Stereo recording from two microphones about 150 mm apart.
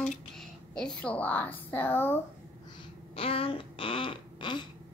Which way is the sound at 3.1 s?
40° left (ahead or behind).